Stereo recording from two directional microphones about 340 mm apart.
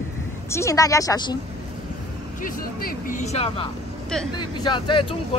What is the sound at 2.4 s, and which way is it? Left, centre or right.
Speech, left.